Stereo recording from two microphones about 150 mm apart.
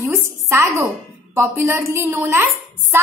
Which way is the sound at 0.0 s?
15° right (ahead or behind).